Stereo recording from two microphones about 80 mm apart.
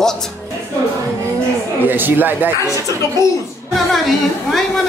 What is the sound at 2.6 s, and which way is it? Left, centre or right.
Speech, left.